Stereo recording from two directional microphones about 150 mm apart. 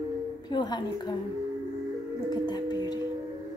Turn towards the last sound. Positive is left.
turn(degrees=25)  # may be behind; listen again after turning